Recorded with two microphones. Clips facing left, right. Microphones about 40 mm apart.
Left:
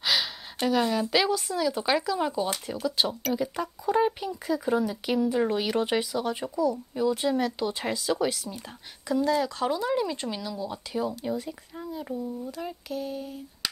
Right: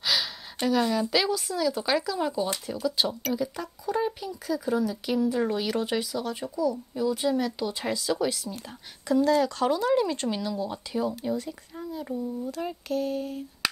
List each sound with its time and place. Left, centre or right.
0.0 s speech: centre
9.0 s speech: centre
12.8 s a sound: centre